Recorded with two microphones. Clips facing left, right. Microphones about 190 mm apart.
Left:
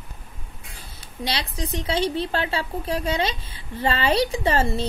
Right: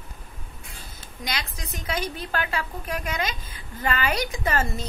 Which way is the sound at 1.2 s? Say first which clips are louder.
Left 5 dB; 30° left (ahead or behind).